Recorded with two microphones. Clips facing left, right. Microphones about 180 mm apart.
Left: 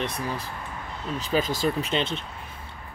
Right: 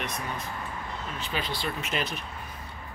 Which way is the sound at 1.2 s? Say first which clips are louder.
Left 9 dB; 40° left (ahead or behind).